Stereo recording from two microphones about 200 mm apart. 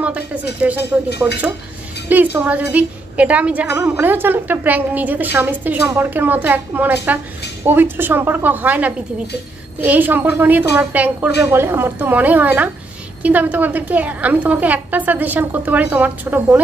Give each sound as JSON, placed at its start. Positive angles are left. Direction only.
{"t": 0.0, "sound": "a woman's voice", "side_deg": -5}
{"t": 1.3, "sound": "speech", "side_deg": 60}
{"t": 2.3, "sound": "a woman's voice", "side_deg": -5}